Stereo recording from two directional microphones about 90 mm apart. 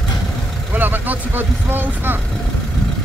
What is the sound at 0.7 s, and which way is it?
Speech, 20° right (ahead or behind).